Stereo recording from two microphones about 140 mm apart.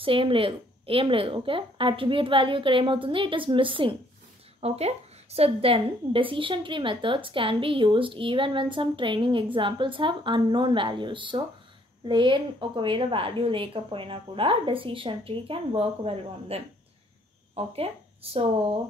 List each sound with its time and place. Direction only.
0.0 s a woman's voice: 40° right (ahead or behind)
4.6 s a woman's voice: 50° right (ahead or behind)